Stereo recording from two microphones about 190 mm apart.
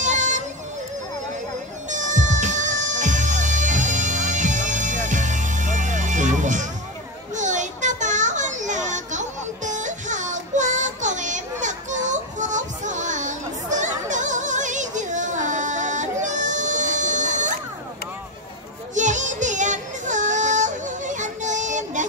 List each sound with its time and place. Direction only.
0.0 s a sound: 40° right (ahead or behind)
1.9 s music: 40° right (ahead or behind)
7.3 s children playing: 40° right (ahead or behind)
18.9 s music: 40° right (ahead or behind)